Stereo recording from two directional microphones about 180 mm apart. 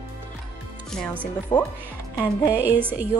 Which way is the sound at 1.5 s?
25° left (ahead or behind).